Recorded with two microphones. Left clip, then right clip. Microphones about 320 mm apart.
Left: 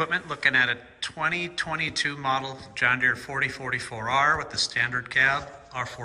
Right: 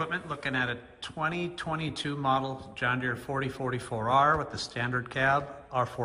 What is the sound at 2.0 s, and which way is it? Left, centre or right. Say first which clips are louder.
A man's voice: left 2 dB; centre.